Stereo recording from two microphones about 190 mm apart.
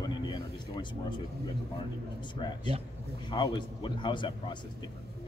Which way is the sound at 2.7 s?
30° right (ahead or behind).